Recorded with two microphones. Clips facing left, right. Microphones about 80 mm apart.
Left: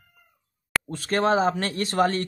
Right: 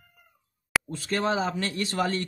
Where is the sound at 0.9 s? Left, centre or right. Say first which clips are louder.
Left 7 dB; left.